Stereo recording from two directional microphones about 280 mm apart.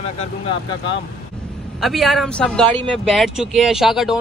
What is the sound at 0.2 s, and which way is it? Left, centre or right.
Speech, centre.